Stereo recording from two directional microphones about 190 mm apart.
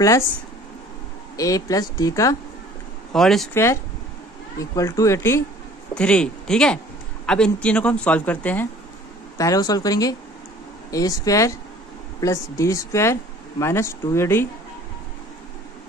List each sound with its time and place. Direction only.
1.3 s speech: 20° left (ahead or behind)
3.1 s speech: centre (ahead or behind)
3.5 s speech: 15° left (ahead or behind)
9.4 s speech: 20° left (ahead or behind)